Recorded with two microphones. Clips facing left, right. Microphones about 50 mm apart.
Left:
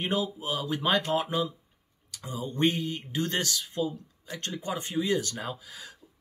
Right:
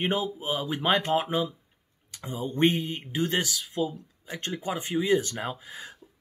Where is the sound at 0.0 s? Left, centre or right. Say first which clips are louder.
Right 2 dB; right.